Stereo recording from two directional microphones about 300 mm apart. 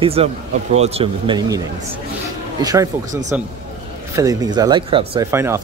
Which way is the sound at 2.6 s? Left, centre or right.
Centre.